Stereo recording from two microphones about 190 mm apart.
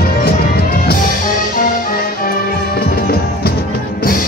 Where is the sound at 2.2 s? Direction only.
55° left (ahead or behind).